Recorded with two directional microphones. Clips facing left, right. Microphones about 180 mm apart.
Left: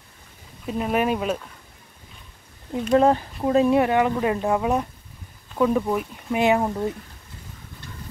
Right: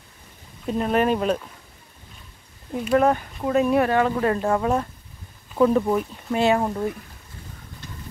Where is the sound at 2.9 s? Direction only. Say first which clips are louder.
Left 1 dB; 30° left (ahead or behind); by 4.8 s 10° left (ahead or behind).